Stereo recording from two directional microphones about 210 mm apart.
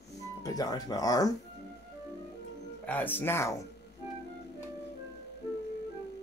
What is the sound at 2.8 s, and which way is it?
Speech, 10° left (ahead or behind).